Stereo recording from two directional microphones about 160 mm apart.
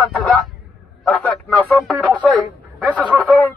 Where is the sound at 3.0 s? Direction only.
5° left (ahead or behind).